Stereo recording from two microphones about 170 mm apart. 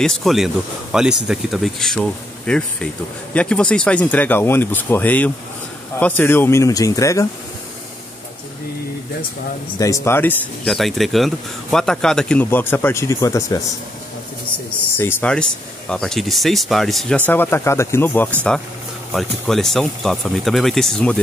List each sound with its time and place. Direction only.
0.0 s speech: centre (ahead or behind); by 7.2 s 20° left (ahead or behind)
9.8 s speech: 20° left (ahead or behind)
15.0 s speech: 15° left (ahead or behind)